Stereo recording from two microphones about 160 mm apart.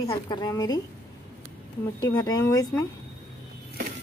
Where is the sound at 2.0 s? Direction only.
20° left (ahead or behind).